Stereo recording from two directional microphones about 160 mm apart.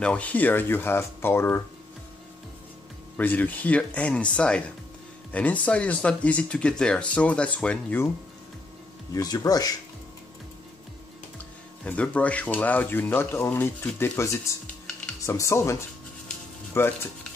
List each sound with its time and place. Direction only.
0.0 s speech: 10° left (ahead or behind)
3.2 s speech: 10° left (ahead or behind)
9.1 s speech: 20° left (ahead or behind)
11.8 s speech: 10° left (ahead or behind)